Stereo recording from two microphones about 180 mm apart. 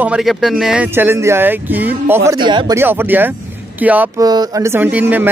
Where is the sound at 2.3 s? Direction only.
25° right (ahead or behind).